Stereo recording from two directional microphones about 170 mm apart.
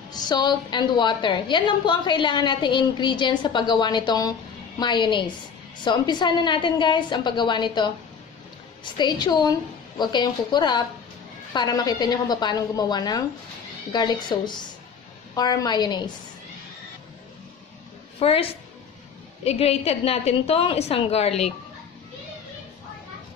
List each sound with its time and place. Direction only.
0.1 s a woman's voice: 25° left (ahead or behind)
18.2 s a woman's voice: 35° left (ahead or behind)